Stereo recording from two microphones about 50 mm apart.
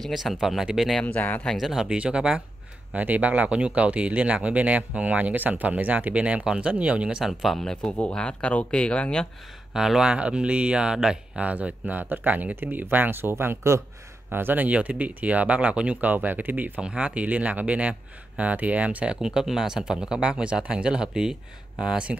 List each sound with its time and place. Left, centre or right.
0.1 s speech: centre
1.0 s speech: left
1.6 s speech: centre
2.9 s speech: right
6.4 s speech: centre
6.7 s speech: right
7.2 s speech: centre
7.6 s speech: centre
9.8 s speech: centre
10.1 s speech: right
11.3 s speech: right
16.8 s speech: right
19.2 s speech: centre